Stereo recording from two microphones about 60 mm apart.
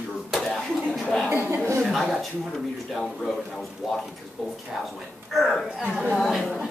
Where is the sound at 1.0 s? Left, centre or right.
Centre.